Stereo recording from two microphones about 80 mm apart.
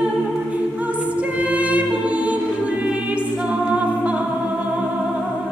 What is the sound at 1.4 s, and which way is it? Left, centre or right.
Music, centre.